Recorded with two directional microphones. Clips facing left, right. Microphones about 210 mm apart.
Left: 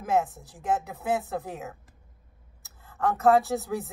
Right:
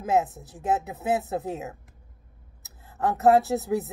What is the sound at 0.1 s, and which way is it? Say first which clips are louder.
A woman's voice: right 2 dB; 20° right (ahead or behind).